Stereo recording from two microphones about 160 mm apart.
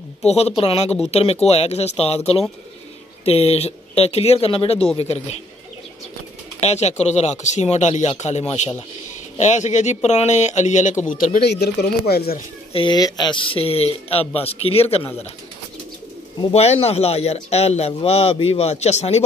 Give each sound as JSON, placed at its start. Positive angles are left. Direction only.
{"t": 0.2, "sound": "a man's voice", "side_deg": 40}
{"t": 6.6, "sound": "speech", "side_deg": 45}
{"t": 11.6, "sound": "speech", "side_deg": 90}
{"t": 12.7, "sound": "a man's voice", "side_deg": 30}
{"t": 16.5, "sound": "a man's voice", "side_deg": 40}